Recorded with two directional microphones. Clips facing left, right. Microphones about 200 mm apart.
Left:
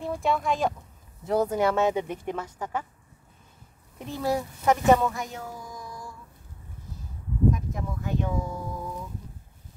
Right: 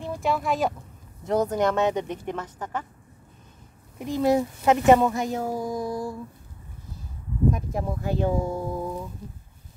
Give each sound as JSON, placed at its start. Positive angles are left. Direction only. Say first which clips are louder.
{"t": 0.0, "sound": "speech", "louder": "even", "side_deg": 0}
{"t": 4.0, "sound": "a woman's voice", "louder": "right 6 dB", "side_deg": -20}
{"t": 5.3, "sound": "speech", "louder": "right 11 dB", "side_deg": -40}
{"t": 7.5, "sound": "speech", "louder": "right 4 dB", "side_deg": -35}